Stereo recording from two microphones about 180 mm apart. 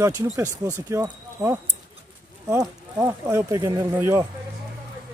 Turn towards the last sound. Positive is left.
turn(degrees=-15)  # may be behind; listen again after turning